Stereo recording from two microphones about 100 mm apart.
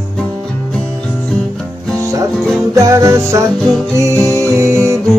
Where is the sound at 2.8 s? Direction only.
30° right (ahead or behind).